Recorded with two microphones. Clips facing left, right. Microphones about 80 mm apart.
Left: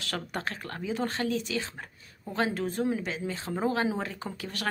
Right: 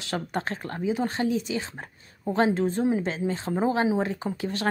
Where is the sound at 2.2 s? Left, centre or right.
Right.